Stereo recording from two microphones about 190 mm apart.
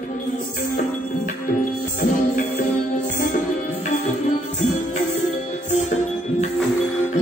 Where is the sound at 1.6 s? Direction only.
40° left (ahead or behind).